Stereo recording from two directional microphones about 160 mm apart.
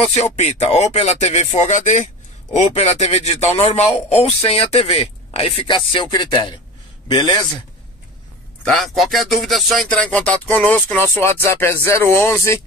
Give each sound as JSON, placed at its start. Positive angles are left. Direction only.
{"t": 0.0, "sound": "speech", "side_deg": 40}
{"t": 5.9, "sound": "music", "side_deg": 30}
{"t": 8.6, "sound": "speech", "side_deg": 0}